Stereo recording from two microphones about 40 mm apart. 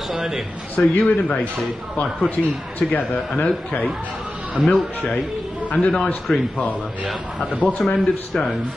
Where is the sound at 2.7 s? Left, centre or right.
Left.